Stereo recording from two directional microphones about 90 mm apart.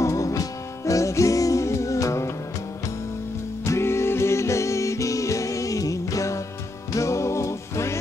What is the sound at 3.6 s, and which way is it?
Music, 30° left (ahead or behind).